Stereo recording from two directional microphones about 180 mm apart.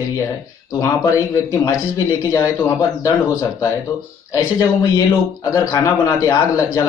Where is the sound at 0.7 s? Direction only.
15° left (ahead or behind).